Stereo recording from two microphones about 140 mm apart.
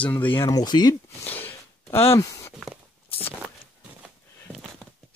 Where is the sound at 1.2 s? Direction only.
15° left (ahead or behind).